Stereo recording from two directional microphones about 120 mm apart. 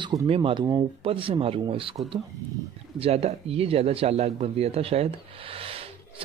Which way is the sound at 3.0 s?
60° right (ahead or behind).